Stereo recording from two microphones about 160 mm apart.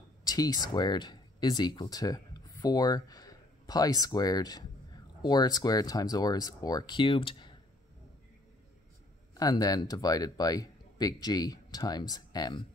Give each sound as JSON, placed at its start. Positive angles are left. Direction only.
{"t": 0.2, "sound": "speech", "side_deg": 25}
{"t": 9.3, "sound": "speech", "side_deg": 25}